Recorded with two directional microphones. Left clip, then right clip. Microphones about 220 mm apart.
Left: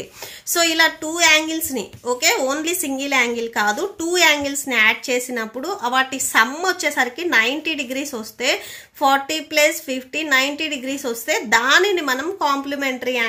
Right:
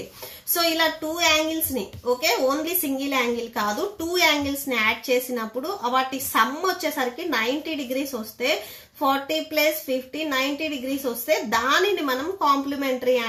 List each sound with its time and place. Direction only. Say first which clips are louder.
0.5 s a child's voice: left 5 dB; 40° left (ahead or behind)